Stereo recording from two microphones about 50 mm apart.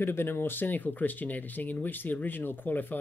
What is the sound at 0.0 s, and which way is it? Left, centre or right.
Speech, left.